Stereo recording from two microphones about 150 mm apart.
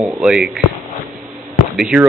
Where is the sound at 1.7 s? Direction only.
5° right (ahead or behind).